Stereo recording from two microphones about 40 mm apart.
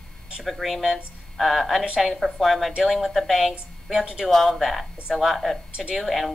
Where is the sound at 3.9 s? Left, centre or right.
Centre.